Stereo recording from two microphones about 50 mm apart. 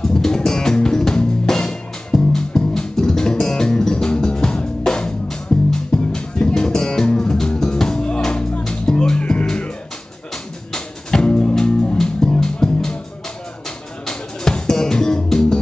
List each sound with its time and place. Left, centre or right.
0.0 s music: centre
14.0 s music: centre